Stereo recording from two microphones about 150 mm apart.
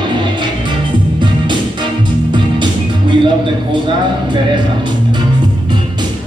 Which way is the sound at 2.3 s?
30° right (ahead or behind).